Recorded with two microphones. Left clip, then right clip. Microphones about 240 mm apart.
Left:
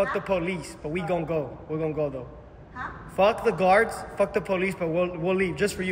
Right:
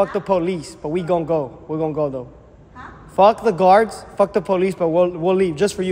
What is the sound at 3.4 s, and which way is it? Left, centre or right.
A man's voice, right.